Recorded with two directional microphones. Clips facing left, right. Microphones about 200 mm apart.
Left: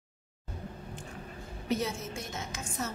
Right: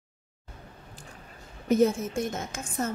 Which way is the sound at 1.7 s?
50° right (ahead or behind).